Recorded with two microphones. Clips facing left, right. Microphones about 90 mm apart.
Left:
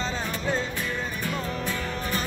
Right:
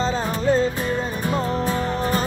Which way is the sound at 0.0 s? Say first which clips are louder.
Right 8 dB; 35° right (ahead or behind).